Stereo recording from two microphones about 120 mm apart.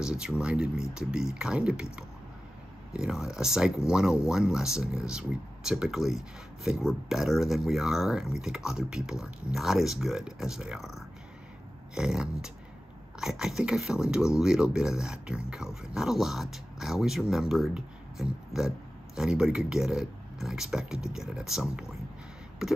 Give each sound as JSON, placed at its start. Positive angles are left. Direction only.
{"t": 0.0, "sound": "speech", "side_deg": -5}